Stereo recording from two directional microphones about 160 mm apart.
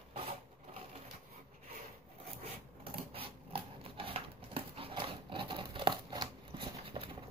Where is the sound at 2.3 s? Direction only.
35° right (ahead or behind).